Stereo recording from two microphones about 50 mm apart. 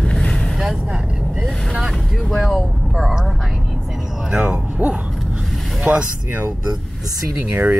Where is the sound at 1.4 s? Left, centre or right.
Centre.